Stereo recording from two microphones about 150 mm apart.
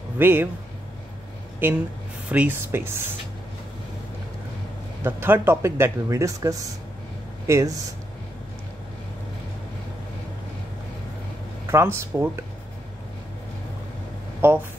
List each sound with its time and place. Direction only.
0.2 s speech: 15° right (ahead or behind)
2.2 s speech: 10° right (ahead or behind)
5.0 s speech: 15° right (ahead or behind)
11.6 s speech: 15° right (ahead or behind)
14.4 s speech: 15° right (ahead or behind)